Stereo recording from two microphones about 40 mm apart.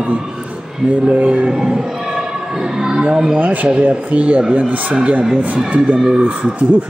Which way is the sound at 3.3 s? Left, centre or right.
Right.